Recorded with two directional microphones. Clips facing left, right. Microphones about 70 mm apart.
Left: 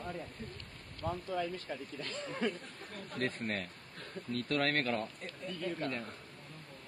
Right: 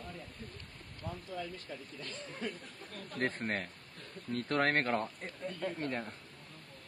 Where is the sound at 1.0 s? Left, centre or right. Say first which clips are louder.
Left 6 dB; left.